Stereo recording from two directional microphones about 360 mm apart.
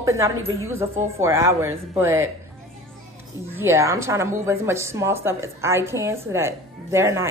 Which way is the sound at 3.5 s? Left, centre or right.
Centre.